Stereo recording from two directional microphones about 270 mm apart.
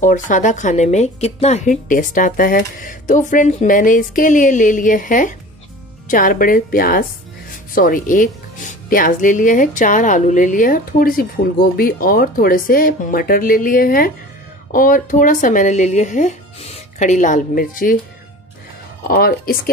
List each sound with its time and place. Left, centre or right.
0.0 s speech: left
19.0 s speech: left